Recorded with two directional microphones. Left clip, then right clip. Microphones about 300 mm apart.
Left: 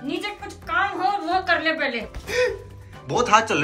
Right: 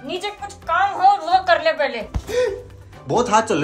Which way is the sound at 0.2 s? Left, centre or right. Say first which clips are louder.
Right 3 dB; right.